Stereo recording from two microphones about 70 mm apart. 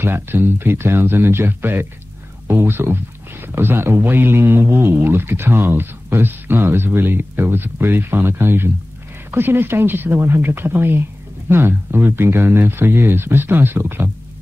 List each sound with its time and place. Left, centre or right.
0.0 s speech: right